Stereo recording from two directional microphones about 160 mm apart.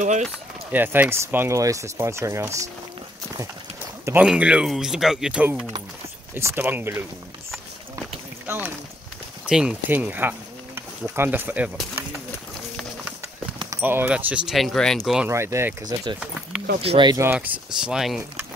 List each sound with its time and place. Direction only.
0.0 s run: 50° right (ahead or behind)
0.7 s speech: 10° right (ahead or behind)
4.0 s speech: 10° right (ahead or behind)
8.5 s a sound: 10° right (ahead or behind)
9.5 s speech: 5° right (ahead or behind)
13.7 s speech: 10° right (ahead or behind)
15.2 s speech: 15° right (ahead or behind)
16.2 s a sound: 5° right (ahead or behind)
16.8 s speech: 35° right (ahead or behind)
17.1 s speech: 15° right (ahead or behind)